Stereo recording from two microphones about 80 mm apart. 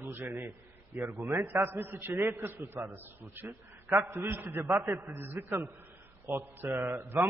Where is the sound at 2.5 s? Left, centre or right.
Right.